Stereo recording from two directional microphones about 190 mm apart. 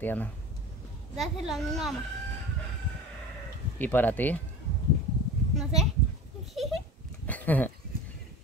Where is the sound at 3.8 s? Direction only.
10° left (ahead or behind).